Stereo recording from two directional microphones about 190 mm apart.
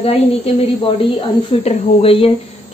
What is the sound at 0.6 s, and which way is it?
Speech, 30° left (ahead or behind).